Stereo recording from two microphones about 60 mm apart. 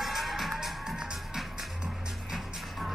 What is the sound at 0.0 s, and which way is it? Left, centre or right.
Music, centre.